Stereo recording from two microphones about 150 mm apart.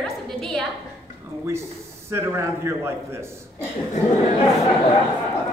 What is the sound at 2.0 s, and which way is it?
Speech, 15° right (ahead or behind).